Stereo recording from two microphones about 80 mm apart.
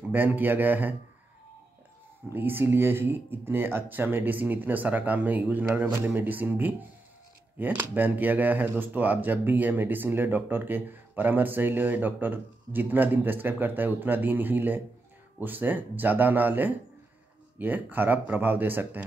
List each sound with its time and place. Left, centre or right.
0.1 s speech: right
2.2 s speech: right